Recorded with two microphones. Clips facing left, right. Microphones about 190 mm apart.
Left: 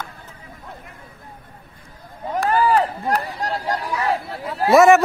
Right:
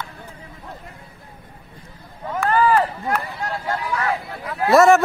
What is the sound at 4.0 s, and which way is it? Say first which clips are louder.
Chatter: left 2 dB; 35° left (ahead or behind).